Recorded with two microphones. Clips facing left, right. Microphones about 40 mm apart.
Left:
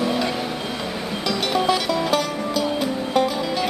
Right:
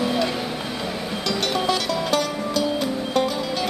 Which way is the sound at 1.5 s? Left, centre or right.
Centre.